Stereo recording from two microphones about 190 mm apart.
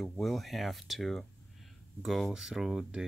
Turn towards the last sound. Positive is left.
turn(degrees=-5)  # may be behind; listen again after turning